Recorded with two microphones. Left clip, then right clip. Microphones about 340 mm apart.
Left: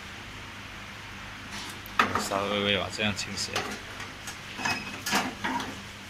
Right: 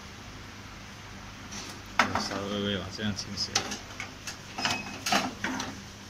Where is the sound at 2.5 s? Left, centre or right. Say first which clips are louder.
Left 6 dB; left.